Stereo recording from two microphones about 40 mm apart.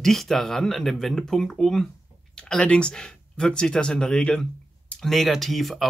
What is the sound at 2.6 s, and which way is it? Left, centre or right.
Speech, left.